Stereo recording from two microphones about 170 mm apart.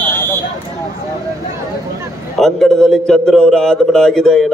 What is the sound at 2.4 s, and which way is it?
A man's voice, centre (ahead or behind).